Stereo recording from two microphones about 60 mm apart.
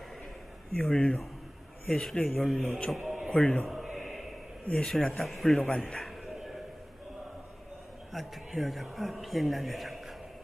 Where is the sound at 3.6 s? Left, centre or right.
Centre.